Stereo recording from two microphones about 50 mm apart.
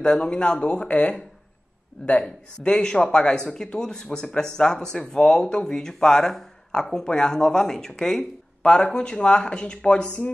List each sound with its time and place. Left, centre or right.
0.0 s speech: centre